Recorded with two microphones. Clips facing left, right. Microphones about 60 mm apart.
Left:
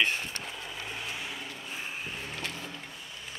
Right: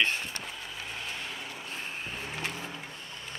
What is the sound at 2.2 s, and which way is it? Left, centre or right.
Vehicle, centre.